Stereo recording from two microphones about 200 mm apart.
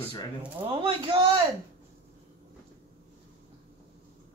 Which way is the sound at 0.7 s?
25° right (ahead or behind).